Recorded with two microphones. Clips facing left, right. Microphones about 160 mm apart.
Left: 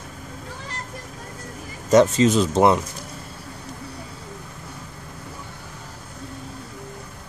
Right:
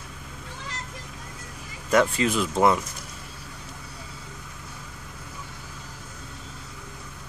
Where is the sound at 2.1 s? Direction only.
25° left (ahead or behind).